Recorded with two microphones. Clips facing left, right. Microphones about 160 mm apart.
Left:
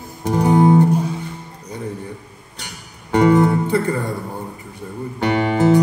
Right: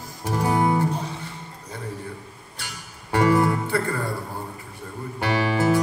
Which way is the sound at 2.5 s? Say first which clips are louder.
Left 3 dB; 20° left (ahead or behind).